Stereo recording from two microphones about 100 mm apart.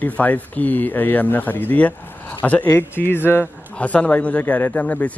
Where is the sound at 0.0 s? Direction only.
15° left (ahead or behind).